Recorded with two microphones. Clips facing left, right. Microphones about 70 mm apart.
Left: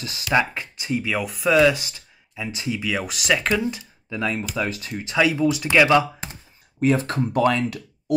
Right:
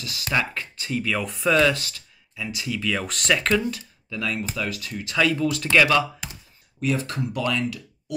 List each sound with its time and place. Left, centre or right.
0.3 s speech: centre
1.2 s speech: centre; by 2.8 s left
2.8 s speech: centre
3.6 s speech: left
5.1 s speech: centre
6.8 s speech: left